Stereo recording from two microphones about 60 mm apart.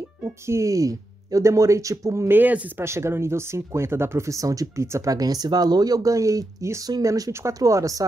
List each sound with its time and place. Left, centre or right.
0.5 s speech: right
2.2 s speech: right
2.8 s speech: right
6.8 s speech: right
7.5 s speech: right